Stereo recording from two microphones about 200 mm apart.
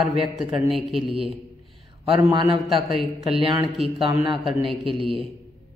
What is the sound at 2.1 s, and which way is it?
Speech, 25° right (ahead or behind).